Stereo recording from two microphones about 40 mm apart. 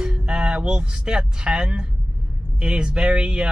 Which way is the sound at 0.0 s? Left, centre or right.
Centre.